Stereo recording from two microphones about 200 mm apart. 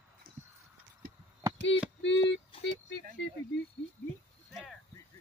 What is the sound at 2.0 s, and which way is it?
Synthetic singing, 65° left (ahead or behind).